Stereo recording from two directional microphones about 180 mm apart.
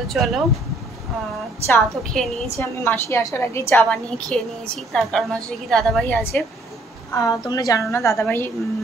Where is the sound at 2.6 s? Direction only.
15° left (ahead or behind).